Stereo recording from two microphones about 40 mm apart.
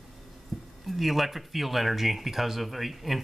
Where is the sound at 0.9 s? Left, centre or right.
Centre.